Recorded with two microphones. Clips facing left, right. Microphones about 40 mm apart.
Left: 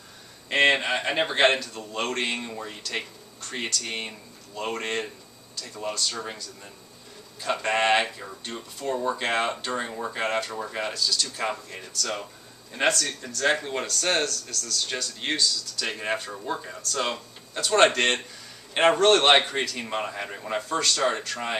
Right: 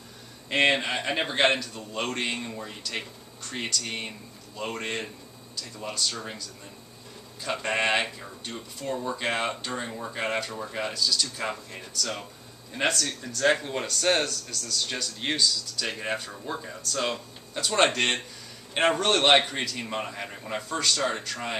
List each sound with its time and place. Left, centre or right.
0.5 s a man's voice: centre
7.5 s a man's voice: centre
8.9 s speech: centre
9.2 s a man's voice: centre
9.7 s a man's voice: centre
10.2 s a man's voice: centre
10.5 s a man's voice: centre
10.8 s a man's voice: centre